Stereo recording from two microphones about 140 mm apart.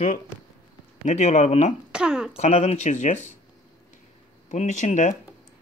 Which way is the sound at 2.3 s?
50° left (ahead or behind).